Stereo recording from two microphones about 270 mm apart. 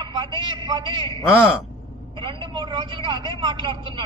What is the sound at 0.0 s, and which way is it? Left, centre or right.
A man's voice, centre.